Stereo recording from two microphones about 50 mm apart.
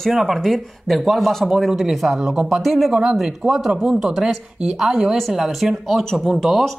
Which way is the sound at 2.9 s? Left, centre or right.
Centre.